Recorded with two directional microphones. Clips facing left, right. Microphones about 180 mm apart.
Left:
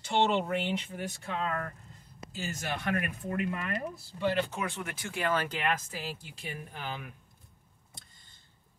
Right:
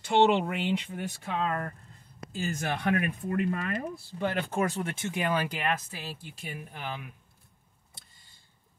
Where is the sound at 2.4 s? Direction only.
55° right (ahead or behind); by 4.9 s 40° right (ahead or behind).